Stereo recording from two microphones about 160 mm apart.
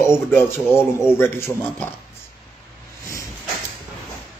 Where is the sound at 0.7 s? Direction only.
15° left (ahead or behind).